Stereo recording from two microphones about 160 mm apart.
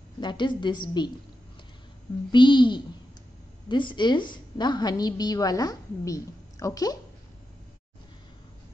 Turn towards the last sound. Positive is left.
turn(degrees=20)  # may be behind; listen again after turning